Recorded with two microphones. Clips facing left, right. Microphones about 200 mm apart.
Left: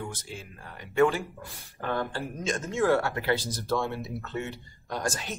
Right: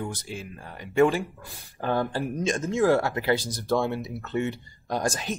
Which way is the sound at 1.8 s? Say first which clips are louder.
Right 4 dB; 35° right (ahead or behind).